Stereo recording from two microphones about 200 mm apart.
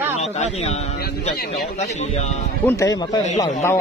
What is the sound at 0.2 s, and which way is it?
A man's voice, 35° left (ahead or behind).